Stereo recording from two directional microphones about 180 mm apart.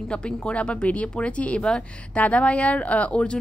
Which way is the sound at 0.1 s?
5° left (ahead or behind).